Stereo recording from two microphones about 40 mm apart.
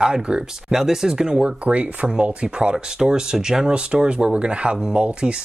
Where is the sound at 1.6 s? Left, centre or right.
Right.